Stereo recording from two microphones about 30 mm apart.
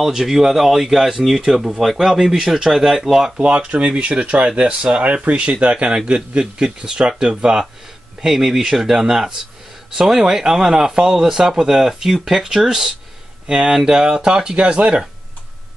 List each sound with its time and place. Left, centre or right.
0.1 s speech: centre
2.0 s speech: centre
3.3 s speech: right
3.8 s speech: right
6.0 s a man's voice: right
8.3 s a man's voice: centre; by 14.8 s right